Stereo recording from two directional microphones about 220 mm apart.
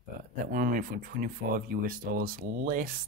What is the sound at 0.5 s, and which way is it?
Speech, 40° right (ahead or behind).